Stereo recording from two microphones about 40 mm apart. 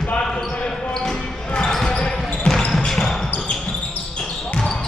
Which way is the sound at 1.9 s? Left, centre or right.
Left.